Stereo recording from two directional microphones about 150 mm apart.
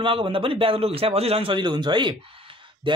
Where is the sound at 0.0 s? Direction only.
35° right (ahead or behind).